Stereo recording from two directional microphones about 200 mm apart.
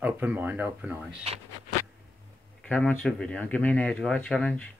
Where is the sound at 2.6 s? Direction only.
5° left (ahead or behind).